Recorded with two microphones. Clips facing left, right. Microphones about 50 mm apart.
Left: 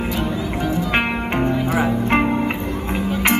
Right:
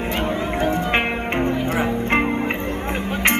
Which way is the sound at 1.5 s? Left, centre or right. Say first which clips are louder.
Left 2 dB; right.